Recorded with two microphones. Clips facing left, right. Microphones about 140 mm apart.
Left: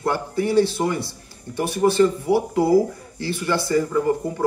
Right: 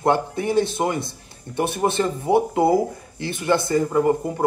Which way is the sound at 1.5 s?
60° right (ahead or behind).